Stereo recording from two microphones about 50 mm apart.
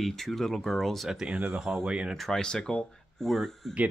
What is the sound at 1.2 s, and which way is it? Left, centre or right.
Speech, right.